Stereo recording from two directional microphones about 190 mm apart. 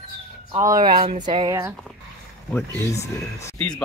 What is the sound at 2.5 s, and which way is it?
Speech, 15° left (ahead or behind).